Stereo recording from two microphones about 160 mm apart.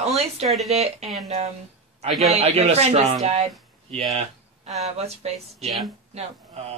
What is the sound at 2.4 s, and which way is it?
Speech, 40° right (ahead or behind).